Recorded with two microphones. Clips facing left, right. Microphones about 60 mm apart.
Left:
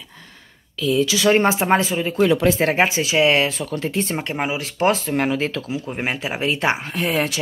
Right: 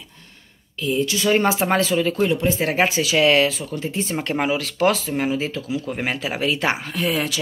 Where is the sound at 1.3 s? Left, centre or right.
Left.